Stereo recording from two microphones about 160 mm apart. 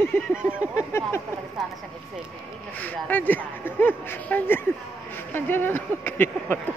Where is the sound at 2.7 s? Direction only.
10° left (ahead or behind).